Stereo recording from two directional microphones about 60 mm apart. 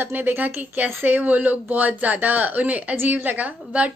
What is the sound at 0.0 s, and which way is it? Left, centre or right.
A woman's voice, right.